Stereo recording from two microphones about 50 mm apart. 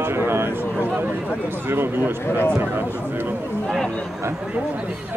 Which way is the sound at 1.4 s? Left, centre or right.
Right.